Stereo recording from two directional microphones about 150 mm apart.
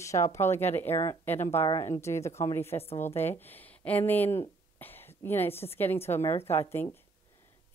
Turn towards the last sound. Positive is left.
turn(degrees=15)  # may be behind; listen again after turning